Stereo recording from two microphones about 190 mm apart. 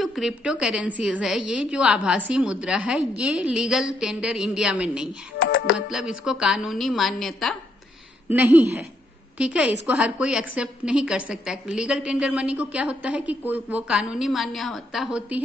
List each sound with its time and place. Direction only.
0.0 s a woman's voice: centre (ahead or behind)
5.4 s music: 90° left
5.8 s a woman's voice: 5° right (ahead or behind)
8.3 s a woman's voice: 10° right (ahead or behind)